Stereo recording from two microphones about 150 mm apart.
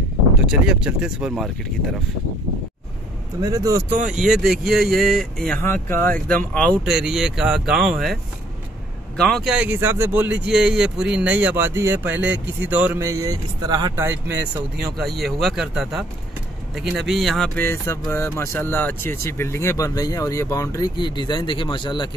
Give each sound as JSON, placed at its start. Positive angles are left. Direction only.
{"t": 0.5, "sound": "speech", "side_deg": -5}
{"t": 3.3, "sound": "speech", "side_deg": -25}
{"t": 4.1, "sound": "speech", "side_deg": -5}
{"t": 5.6, "sound": "speech", "side_deg": 15}
{"t": 6.8, "sound": "speech", "side_deg": -5}
{"t": 13.9, "sound": "speech", "side_deg": -15}
{"t": 14.8, "sound": "speech", "side_deg": 0}
{"t": 17.6, "sound": "speech", "side_deg": 15}